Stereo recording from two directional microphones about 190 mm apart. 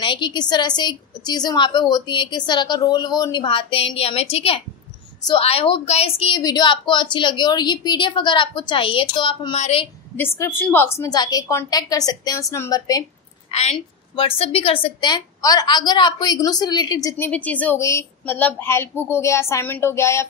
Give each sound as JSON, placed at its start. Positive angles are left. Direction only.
{"t": 0.0, "sound": "a woman's voice", "side_deg": 25}
{"t": 10.1, "sound": "a woman's voice", "side_deg": 15}
{"t": 13.5, "sound": "a woman's voice", "side_deg": 35}
{"t": 17.3, "sound": "a woman's voice", "side_deg": 10}